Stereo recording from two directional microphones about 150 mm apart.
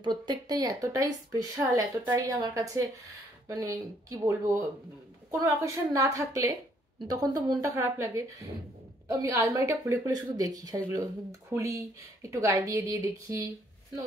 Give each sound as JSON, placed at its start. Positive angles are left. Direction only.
{"t": 0.0, "sound": "speech", "side_deg": -30}